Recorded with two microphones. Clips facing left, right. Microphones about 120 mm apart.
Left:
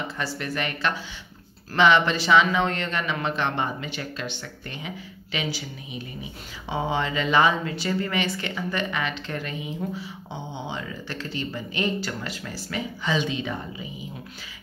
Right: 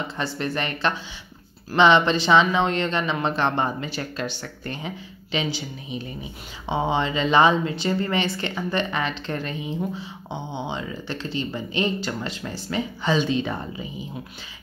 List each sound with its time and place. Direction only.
0.2 s speech: 30° right (ahead or behind)